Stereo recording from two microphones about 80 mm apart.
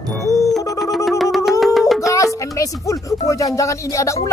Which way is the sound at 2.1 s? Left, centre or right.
Left.